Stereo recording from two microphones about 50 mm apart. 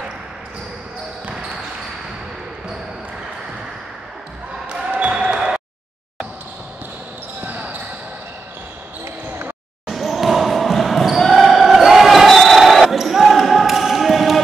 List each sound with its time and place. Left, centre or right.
4.6 s basketball bounce: centre
7.4 s a sound: right
9.8 s basketball bounce: centre